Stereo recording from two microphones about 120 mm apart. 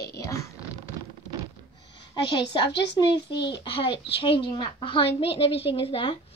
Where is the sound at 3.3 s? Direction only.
45° left (ahead or behind).